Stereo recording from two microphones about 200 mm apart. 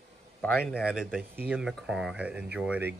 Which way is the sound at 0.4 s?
5° left (ahead or behind).